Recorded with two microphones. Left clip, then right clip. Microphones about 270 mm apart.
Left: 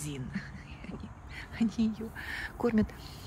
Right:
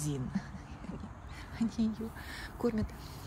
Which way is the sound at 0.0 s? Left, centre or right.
Centre.